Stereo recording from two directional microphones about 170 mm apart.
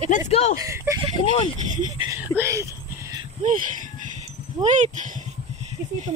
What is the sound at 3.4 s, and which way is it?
Speech, 50° right (ahead or behind).